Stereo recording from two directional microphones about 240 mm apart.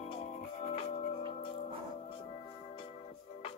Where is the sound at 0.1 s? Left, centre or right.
Left.